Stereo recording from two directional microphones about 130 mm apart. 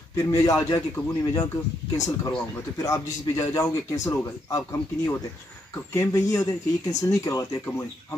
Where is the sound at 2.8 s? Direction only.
25° left (ahead or behind).